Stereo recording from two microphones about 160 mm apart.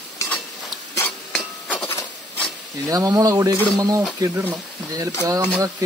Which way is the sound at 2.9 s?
20° right (ahead or behind).